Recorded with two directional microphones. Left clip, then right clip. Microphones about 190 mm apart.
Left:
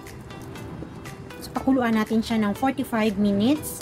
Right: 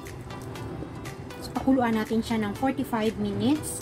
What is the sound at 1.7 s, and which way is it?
A woman's voice, 20° left (ahead or behind).